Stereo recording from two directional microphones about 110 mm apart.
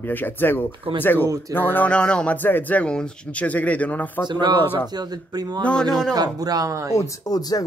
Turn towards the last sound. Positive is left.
turn(degrees=35)  # may be behind; listen again after turning